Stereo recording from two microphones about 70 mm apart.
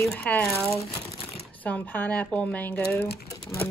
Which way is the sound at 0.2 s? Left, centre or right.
Left.